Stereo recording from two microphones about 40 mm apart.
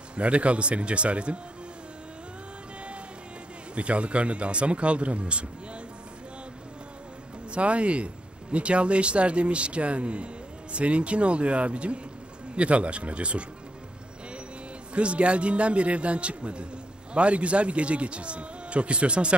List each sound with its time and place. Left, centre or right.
0.1 s speech: right
3.7 s speech: right
7.5 s speech: right
15.0 s a man's voice: right